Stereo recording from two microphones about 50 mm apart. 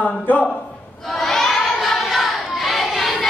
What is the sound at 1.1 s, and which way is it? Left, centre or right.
Child singing, centre.